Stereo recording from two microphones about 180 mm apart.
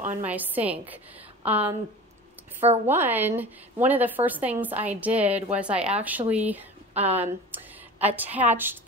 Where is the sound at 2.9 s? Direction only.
10° right (ahead or behind).